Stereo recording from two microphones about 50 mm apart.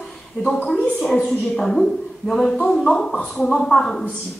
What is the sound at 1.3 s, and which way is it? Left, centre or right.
Speech, centre.